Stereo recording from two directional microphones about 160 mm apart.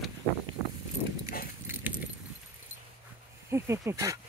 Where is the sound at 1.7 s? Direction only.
10° right (ahead or behind).